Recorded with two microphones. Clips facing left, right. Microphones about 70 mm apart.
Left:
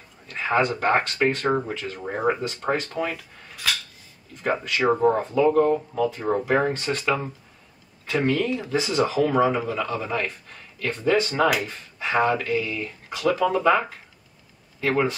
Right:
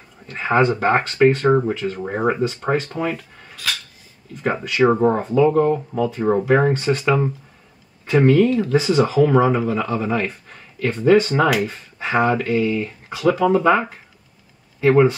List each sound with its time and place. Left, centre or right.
0.3 s a sound: centre
0.7 s speech: centre
4.5 s speech: centre